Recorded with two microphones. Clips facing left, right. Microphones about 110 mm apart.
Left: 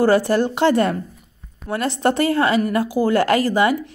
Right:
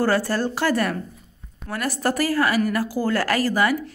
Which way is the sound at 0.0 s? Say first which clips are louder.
Left 5 dB; 20° left (ahead or behind).